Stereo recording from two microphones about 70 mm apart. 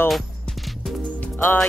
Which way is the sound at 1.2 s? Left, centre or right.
Left.